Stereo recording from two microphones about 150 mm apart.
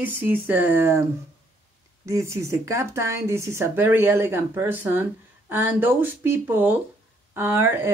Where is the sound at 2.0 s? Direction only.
20° right (ahead or behind).